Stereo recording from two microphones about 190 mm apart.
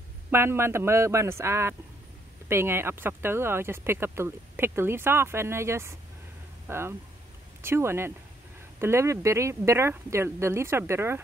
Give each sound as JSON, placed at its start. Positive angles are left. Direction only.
{"t": 0.3, "sound": "speech", "side_deg": -10}